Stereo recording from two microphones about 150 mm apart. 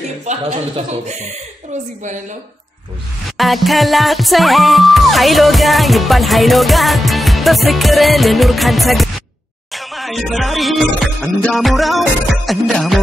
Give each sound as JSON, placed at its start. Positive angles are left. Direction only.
{"t": 0.2, "sound": "speech", "side_deg": -50}
{"t": 3.3, "sound": "music", "side_deg": 0}